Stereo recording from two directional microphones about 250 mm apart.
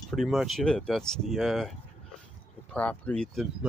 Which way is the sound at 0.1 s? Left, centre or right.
Centre.